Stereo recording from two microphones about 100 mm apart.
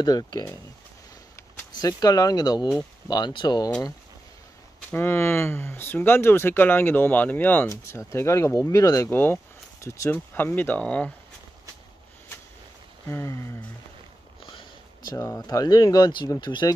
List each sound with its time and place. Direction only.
0.0 s speech: 45° left (ahead or behind)
1.8 s speech: 40° left (ahead or behind)
4.9 s speech: 25° left (ahead or behind)
7.6 s speech: 30° left (ahead or behind)
9.1 s speech: 20° left (ahead or behind)
10.1 s speech: 20° left (ahead or behind)
13.1 s speech: 30° left (ahead or behind)
15.1 s speech: 30° left (ahead or behind)
15.4 s speech: 40° left (ahead or behind)